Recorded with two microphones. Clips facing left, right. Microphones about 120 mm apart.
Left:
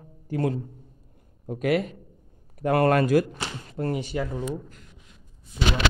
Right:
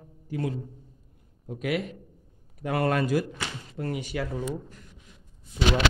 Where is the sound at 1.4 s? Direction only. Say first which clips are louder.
Left 5 dB; 45° left (ahead or behind).